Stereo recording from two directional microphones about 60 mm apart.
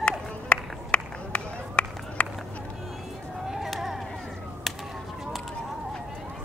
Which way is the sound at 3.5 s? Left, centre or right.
Centre.